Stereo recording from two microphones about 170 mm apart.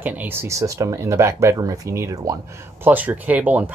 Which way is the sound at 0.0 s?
10° right (ahead or behind).